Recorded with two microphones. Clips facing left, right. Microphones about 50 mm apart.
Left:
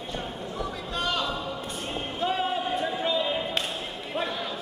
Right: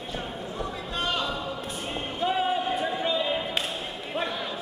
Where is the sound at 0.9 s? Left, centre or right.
Centre.